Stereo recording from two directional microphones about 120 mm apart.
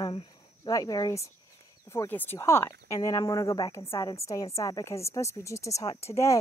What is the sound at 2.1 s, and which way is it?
A woman's voice, 15° left (ahead or behind).